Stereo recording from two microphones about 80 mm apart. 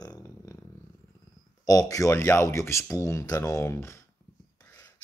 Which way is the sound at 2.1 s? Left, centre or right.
Left.